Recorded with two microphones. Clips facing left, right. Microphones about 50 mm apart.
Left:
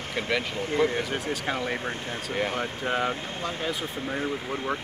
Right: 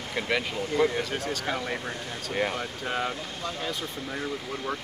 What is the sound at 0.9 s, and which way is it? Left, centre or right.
Speech, centre.